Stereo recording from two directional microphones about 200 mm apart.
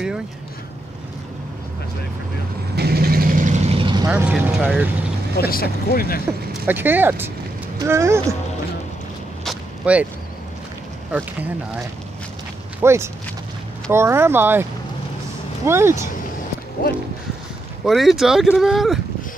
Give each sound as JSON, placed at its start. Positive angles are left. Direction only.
{"t": 2.7, "sound": "vehicle", "side_deg": -50}
{"t": 4.1, "sound": "speech", "side_deg": -5}
{"t": 5.4, "sound": "speech", "side_deg": 45}
{"t": 6.6, "sound": "speech", "side_deg": -10}
{"t": 9.4, "sound": "a sound", "side_deg": -5}
{"t": 11.1, "sound": "speech", "side_deg": -10}
{"t": 12.8, "sound": "speech", "side_deg": -15}
{"t": 17.8, "sound": "speech", "side_deg": 0}